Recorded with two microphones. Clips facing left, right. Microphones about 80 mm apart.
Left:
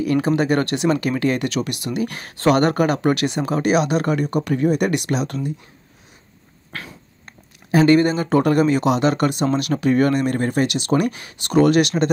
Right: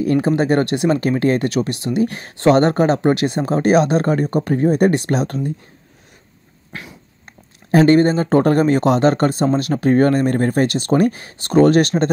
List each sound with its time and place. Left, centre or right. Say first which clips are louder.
0.0 s speech: right 2 dB; right
7.7 s speech: right 2 dB; right